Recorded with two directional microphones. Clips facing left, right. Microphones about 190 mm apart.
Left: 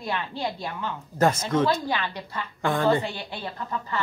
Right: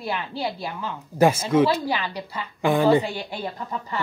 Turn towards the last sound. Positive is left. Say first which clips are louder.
# even
turn(degrees=-15)  # may be behind; listen again after turning